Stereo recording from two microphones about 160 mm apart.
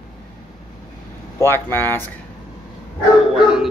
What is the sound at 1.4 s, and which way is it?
Speech, 15° left (ahead or behind).